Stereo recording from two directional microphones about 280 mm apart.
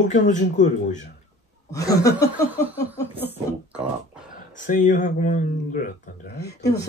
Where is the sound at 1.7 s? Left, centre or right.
Centre.